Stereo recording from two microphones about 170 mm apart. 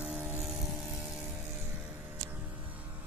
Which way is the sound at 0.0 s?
10° right (ahead or behind).